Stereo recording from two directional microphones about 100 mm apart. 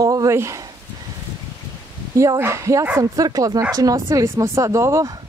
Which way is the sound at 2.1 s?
25° right (ahead or behind).